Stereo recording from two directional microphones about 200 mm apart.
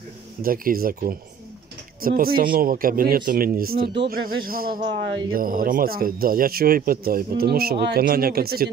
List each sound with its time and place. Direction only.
0.4 s speech: 45° right (ahead or behind)